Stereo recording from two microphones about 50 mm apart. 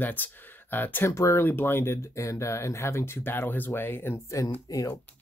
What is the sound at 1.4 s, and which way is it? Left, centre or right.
Speech, left.